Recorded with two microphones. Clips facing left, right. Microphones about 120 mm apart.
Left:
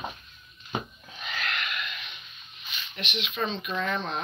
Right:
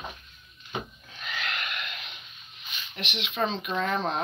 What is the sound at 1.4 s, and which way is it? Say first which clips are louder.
Wheeze: left 1 dB; 20° right (ahead or behind).